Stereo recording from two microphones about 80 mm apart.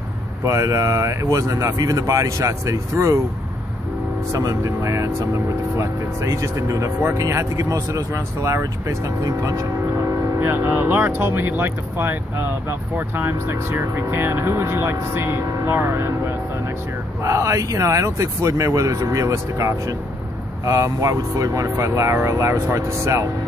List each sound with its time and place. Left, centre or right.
0.5 s speech: right
4.3 s speech: right
10.4 s speech: right